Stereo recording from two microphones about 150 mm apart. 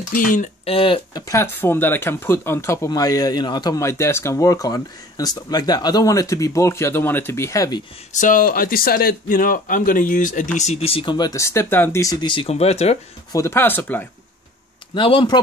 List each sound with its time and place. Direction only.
0.1 s speech: 65° left (ahead or behind)
0.7 s speech: 40° left (ahead or behind)
1.2 s speech: 20° left (ahead or behind)
8.1 s speech: 60° left (ahead or behind)
13.3 s speech: 20° left (ahead or behind)
15.0 s speech: 35° left (ahead or behind)